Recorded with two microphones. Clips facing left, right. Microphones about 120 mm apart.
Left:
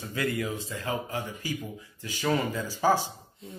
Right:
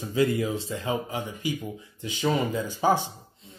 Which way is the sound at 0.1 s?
20° right (ahead or behind).